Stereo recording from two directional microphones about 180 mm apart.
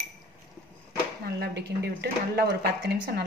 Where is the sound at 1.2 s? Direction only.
65° right (ahead or behind).